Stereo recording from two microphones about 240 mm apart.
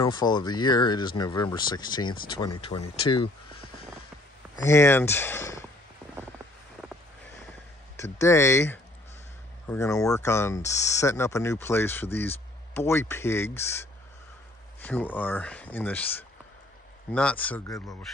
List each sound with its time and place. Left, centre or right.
0.0 s speech: centre
4.6 s speech: centre
8.0 s speech: centre